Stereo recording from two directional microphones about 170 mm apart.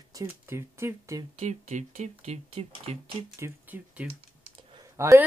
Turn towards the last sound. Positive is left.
turn(degrees=-15)  # may be behind; listen again after turning